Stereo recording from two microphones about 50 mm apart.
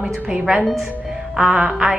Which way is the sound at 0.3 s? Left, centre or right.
Right.